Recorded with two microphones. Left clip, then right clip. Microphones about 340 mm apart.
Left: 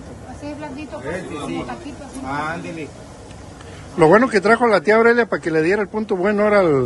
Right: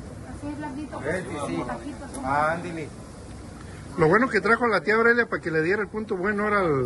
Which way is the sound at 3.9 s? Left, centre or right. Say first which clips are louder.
Left 7 dB; centre.